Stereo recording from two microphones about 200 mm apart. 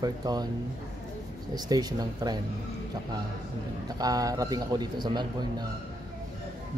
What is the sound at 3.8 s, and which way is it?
Speech, 20° right (ahead or behind).